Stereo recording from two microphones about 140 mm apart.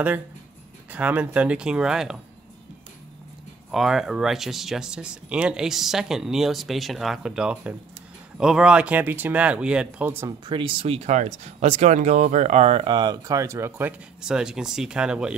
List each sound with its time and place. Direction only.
0.8 s speech: 10° right (ahead or behind)
3.7 s speech: centre (ahead or behind)
10.2 s speech: 35° right (ahead or behind); by 12.8 s 50° right (ahead or behind)
12.8 s speech: 30° right (ahead or behind); by 15.3 s 5° right (ahead or behind)